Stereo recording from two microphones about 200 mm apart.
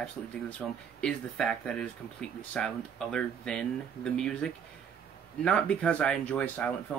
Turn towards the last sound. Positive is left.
turn(degrees=5)  # may be behind; listen again after turning